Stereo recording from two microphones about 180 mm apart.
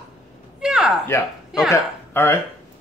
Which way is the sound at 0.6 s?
5° right (ahead or behind).